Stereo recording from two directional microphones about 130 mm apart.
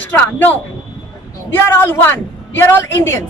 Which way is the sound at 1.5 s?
15° left (ahead or behind).